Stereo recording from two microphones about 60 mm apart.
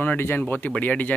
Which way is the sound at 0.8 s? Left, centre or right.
Left.